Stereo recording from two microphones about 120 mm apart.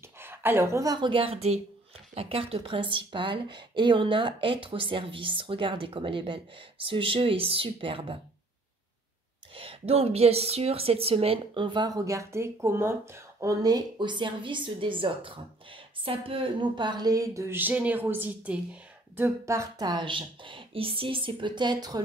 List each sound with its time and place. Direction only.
0.2 s speech: 20° right (ahead or behind); by 8.2 s 45° right (ahead or behind)
9.6 s a woman's voice: 50° right (ahead or behind); by 22.0 s 35° right (ahead or behind)